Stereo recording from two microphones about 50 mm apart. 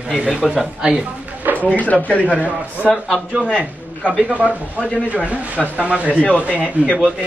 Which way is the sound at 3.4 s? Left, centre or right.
Left.